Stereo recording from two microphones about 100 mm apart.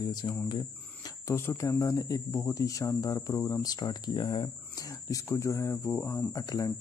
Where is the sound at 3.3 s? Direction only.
25° left (ahead or behind).